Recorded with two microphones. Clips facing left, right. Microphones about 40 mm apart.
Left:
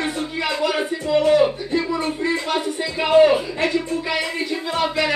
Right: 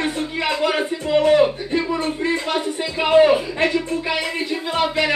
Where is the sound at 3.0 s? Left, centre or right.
Centre.